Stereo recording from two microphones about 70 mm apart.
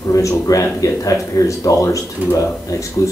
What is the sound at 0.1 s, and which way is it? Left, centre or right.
A man's voice, left.